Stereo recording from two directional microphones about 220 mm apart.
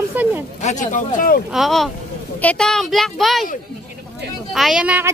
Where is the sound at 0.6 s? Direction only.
30° left (ahead or behind).